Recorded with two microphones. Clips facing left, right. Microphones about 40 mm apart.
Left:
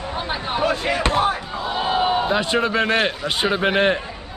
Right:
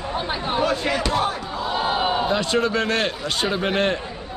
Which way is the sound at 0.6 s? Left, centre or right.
Left.